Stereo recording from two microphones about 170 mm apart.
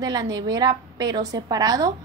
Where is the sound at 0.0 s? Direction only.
25° right (ahead or behind).